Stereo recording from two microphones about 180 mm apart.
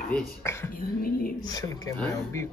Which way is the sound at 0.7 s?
55° left (ahead or behind).